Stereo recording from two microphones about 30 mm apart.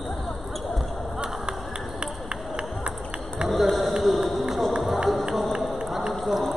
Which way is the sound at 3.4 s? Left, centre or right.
Centre.